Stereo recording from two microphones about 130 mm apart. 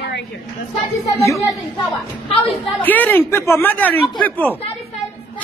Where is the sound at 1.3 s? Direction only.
25° left (ahead or behind).